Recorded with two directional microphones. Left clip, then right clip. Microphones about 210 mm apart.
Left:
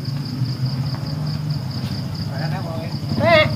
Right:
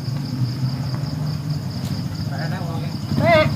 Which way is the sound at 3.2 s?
15° left (ahead or behind).